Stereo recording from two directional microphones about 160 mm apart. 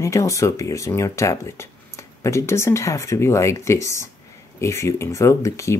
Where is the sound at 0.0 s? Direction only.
20° left (ahead or behind).